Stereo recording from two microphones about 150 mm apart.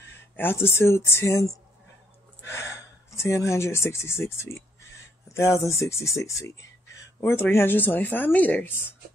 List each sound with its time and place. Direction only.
0.4 s speech: 15° left (ahead or behind)